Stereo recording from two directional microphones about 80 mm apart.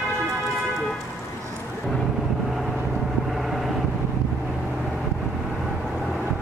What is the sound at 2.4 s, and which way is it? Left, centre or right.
Vehicle, centre.